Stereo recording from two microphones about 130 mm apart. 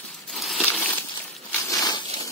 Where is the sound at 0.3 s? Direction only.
Centre (ahead or behind).